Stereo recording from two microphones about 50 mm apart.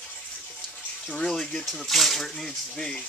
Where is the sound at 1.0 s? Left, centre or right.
Centre.